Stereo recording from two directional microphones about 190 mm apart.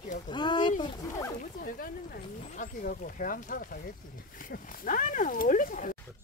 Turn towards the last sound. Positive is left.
turn(degrees=45)  # may be behind; listen again after turning